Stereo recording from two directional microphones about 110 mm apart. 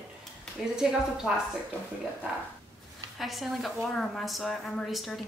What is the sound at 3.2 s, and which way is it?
A woman's voice, centre (ahead or behind).